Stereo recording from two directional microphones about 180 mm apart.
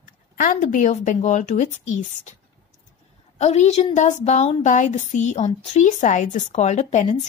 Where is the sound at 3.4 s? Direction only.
35° left (ahead or behind).